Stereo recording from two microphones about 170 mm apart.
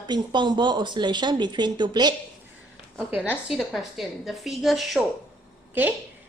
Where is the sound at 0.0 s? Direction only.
25° right (ahead or behind).